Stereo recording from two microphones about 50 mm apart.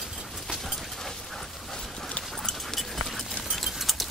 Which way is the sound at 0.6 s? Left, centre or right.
Centre.